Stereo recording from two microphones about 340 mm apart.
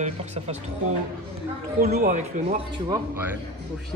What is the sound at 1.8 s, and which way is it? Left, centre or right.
Speech, right.